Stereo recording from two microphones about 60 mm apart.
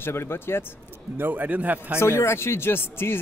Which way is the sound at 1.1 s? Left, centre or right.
Right.